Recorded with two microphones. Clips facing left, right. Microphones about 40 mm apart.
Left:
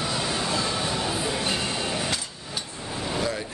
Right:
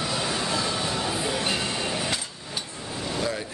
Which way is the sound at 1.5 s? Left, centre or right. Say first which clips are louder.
Even; centre.